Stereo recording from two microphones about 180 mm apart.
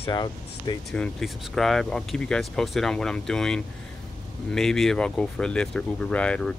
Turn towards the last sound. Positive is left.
turn(degrees=5)  # may be behind; listen again after turning